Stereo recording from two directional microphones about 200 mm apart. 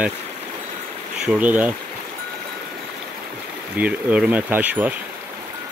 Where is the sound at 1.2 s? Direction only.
5° right (ahead or behind).